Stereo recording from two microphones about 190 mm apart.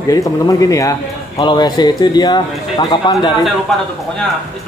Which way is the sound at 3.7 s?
Centre (ahead or behind).